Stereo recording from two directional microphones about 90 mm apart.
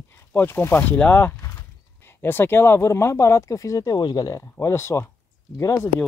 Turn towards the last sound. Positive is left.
turn(degrees=35)  # may be behind; listen again after turning